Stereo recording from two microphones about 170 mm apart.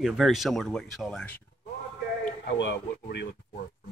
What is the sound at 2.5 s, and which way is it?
Speech, 90° left.